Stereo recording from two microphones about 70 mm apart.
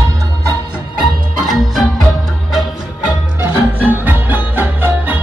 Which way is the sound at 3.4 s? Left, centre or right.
Right.